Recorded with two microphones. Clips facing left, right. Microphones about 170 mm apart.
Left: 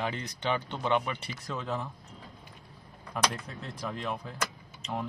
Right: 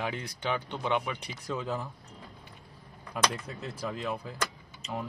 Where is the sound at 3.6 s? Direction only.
5° right (ahead or behind).